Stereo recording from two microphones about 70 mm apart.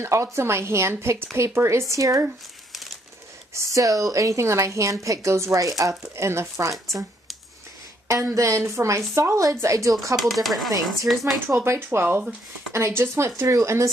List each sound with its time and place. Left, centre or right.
0.0 s a woman's voice: right
3.5 s a woman's voice: right
8.4 s a woman's voice: right
10.1 s speech: centre
11.3 s a woman's voice: right